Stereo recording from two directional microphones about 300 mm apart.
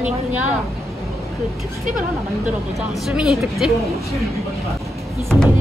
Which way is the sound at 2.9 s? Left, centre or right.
Centre.